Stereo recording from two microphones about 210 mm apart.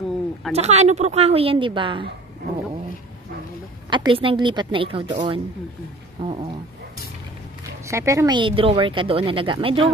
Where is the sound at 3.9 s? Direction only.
25° right (ahead or behind).